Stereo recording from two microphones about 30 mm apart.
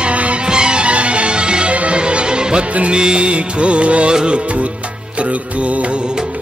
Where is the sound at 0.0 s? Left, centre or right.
Right.